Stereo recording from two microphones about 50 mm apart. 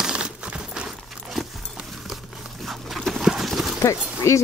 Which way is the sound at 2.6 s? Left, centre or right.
Centre.